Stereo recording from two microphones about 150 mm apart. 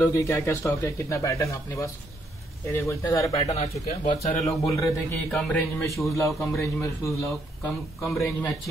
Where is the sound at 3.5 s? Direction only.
45° left (ahead or behind).